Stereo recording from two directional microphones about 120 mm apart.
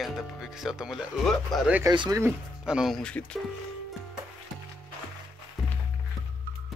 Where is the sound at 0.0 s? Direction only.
Centre (ahead or behind).